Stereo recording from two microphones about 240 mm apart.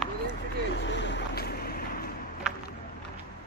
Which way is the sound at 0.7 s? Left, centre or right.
Left.